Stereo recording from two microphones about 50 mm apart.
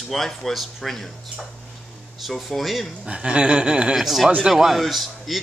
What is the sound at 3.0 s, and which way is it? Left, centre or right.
Speech, centre.